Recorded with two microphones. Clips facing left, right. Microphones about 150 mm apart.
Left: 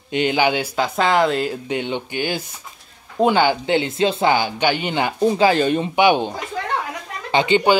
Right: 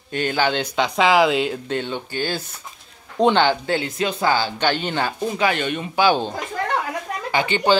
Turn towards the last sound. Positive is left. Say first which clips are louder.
# left 3 dB
turn(degrees=20)  # may be behind; listen again after turning